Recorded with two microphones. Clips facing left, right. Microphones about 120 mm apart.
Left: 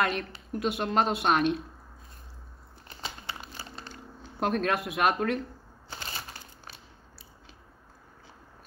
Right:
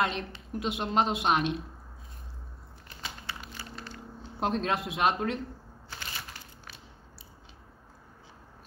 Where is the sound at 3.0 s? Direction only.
30° left (ahead or behind).